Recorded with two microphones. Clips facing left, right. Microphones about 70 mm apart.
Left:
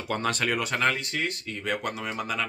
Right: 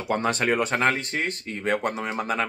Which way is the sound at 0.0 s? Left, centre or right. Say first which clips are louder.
Right 4 dB; right.